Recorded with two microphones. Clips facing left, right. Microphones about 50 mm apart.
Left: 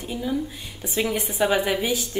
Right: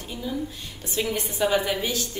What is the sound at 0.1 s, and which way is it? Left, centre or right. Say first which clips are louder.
A woman's voice: left 4 dB; left.